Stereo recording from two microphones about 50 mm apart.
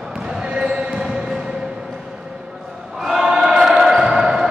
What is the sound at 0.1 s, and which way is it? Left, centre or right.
Basketball bounce, centre.